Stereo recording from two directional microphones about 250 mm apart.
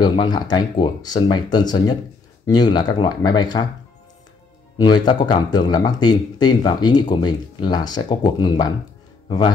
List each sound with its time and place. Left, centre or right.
0.0 s speech: centre
4.7 s speech: centre